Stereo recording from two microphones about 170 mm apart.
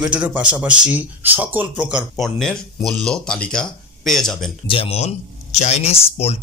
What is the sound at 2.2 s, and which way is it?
Speech, centre (ahead or behind).